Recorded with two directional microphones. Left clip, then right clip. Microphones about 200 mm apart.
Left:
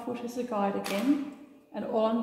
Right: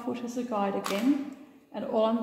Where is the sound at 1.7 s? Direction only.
30° right (ahead or behind).